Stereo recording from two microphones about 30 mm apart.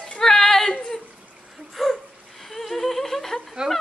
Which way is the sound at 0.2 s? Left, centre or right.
Centre.